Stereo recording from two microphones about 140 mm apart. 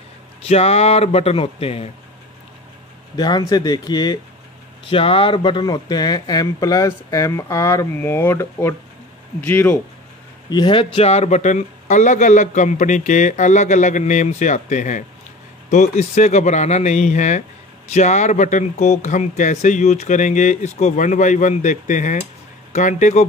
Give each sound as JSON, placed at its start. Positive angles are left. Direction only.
{"t": 0.4, "sound": "a man's voice", "side_deg": 50}
{"t": 3.2, "sound": "speech", "side_deg": 30}
{"t": 10.5, "sound": "speech", "side_deg": 35}